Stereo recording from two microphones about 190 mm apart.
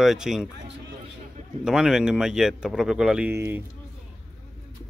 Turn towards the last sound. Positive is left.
turn(degrees=-10)  # may be behind; listen again after turning